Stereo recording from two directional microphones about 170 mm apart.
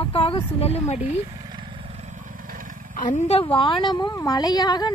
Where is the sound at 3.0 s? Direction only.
50° left (ahead or behind).